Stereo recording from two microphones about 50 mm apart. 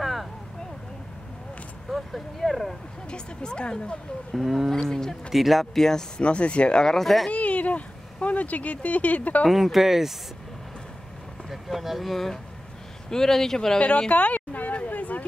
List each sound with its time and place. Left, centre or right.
0.0 s a sound: centre
1.9 s speech: centre
3.1 s speech: centre
4.3 s speech: centre
4.8 s speech: centre
5.3 s speech: centre
6.2 s speech: left; by 7.2 s centre
7.2 s speech: left
9.5 s speech: centre
11.5 s speech: centre
13.7 s a sound: left